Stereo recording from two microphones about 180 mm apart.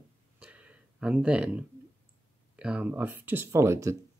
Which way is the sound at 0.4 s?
5° right (ahead or behind).